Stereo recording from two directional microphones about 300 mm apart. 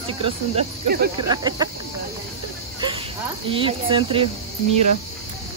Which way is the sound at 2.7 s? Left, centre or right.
Centre.